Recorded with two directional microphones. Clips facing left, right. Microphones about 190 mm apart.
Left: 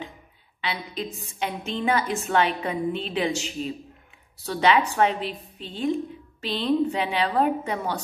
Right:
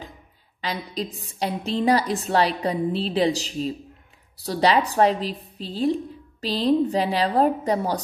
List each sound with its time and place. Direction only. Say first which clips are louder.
0.6 s a woman's voice: right 2 dB; 40° right (ahead or behind)